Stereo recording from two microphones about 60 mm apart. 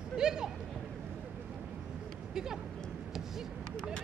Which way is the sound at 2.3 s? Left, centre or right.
Centre.